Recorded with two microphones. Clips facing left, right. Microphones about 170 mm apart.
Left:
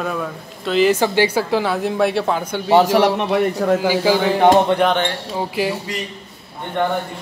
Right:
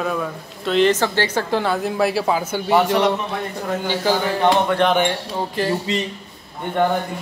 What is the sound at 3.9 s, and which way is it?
A man's voice, 10° left (ahead or behind).